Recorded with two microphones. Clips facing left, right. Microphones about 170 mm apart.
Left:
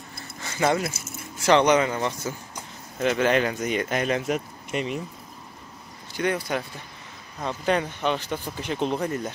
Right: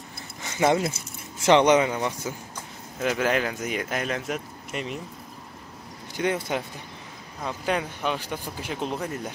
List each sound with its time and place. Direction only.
0.4 s speech: 20° right (ahead or behind); by 4.9 s centre (ahead or behind)
6.1 s speech: 20° right (ahead or behind)
7.4 s speech: 5° right (ahead or behind)